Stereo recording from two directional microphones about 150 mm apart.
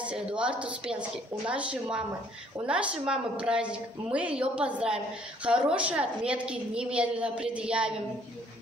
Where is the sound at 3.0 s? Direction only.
5° right (ahead or behind).